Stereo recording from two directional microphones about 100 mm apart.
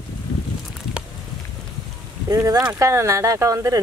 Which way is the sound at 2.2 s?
35° right (ahead or behind).